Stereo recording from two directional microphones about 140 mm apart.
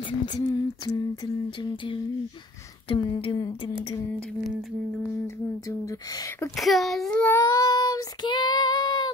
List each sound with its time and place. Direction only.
0.2 s a sound: 30° left (ahead or behind)
5.7 s speech: 20° left (ahead or behind)
6.5 s speech: centre (ahead or behind)
7.4 s child singing: 25° left (ahead or behind)